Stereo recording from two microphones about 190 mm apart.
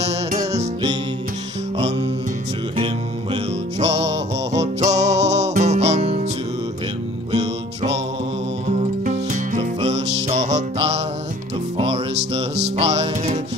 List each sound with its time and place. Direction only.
0.0 s music: 35° right (ahead or behind)
4.5 s music: 35° right (ahead or behind)
9.0 s music: 45° right (ahead or behind)